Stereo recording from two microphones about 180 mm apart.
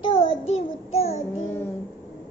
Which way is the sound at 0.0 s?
30° left (ahead or behind).